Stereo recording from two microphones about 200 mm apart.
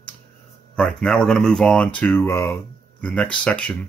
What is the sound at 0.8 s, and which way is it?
Speech, 5° left (ahead or behind).